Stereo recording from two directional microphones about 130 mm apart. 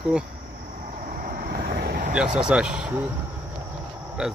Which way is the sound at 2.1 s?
10° right (ahead or behind).